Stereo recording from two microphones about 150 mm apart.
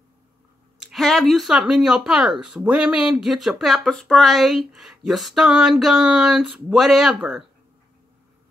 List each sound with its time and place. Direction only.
0.7 s speech: centre (ahead or behind)